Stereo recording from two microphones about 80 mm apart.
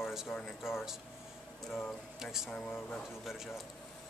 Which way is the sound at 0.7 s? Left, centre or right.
Centre.